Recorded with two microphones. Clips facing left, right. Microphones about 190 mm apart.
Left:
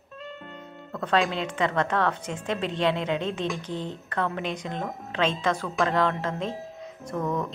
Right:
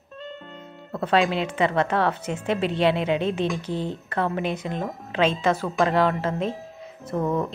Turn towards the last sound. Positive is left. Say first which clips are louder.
# right 4 dB
turn(degrees=-30)  # may be behind; listen again after turning